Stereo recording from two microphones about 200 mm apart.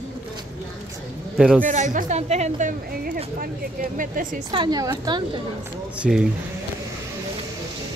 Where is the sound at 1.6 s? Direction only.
40° right (ahead or behind).